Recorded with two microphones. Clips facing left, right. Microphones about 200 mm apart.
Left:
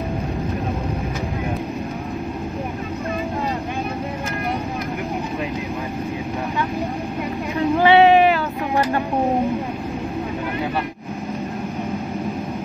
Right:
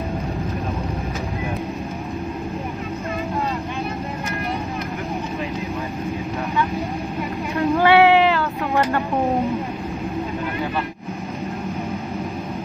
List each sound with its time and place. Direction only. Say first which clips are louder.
7.5 s vehicle: left 1 dB; 15° left (ahead or behind)